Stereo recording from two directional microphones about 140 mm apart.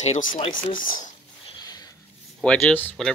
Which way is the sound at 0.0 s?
60° left (ahead or behind).